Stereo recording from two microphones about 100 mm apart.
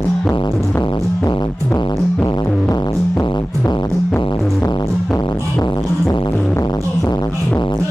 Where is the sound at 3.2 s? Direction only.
25° left (ahead or behind).